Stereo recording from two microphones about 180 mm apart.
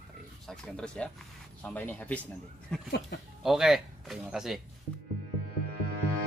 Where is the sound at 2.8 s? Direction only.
70° left (ahead or behind).